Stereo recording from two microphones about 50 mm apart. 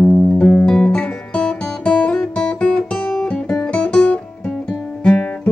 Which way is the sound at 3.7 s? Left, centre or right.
Left.